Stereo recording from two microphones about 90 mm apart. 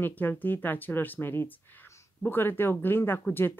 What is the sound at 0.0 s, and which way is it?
Speech, 20° left (ahead or behind).